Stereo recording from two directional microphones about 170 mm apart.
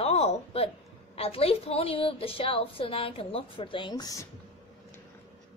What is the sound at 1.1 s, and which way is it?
A woman's voice, 35° left (ahead or behind).